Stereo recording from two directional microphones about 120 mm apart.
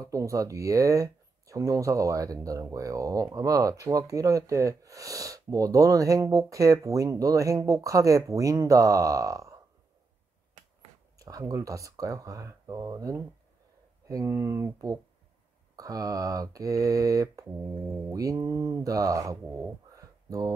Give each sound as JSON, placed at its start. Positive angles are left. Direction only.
{"t": 0.0, "sound": "speech", "side_deg": -25}
{"t": 11.1, "sound": "speech", "side_deg": -30}